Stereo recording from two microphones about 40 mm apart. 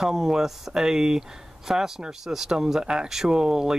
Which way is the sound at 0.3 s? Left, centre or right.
Centre.